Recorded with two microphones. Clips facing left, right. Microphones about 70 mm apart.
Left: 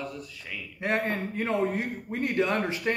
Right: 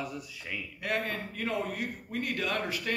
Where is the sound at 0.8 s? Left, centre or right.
Left.